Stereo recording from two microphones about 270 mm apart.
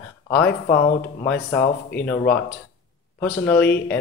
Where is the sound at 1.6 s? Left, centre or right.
Left.